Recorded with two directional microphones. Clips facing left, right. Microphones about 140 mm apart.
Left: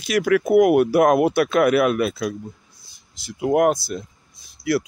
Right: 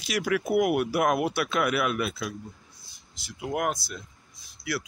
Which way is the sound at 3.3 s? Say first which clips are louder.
Left 11 dB; 45° left (ahead or behind).